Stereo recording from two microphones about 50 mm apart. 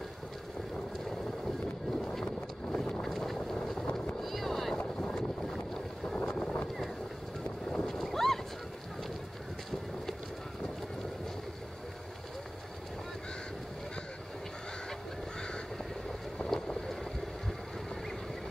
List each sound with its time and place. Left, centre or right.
2.0 s vehicle: centre
3.0 s vehicle: centre
3.9 s a sound: centre
5.1 s boat: centre
6.0 s wind noise: centre
7.6 s boat: centre
16.3 s boat: centre